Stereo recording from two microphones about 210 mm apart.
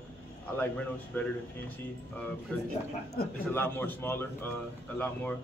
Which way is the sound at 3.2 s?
45° left (ahead or behind).